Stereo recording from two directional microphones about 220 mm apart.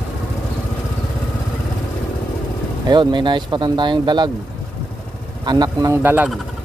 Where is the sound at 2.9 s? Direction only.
20° right (ahead or behind).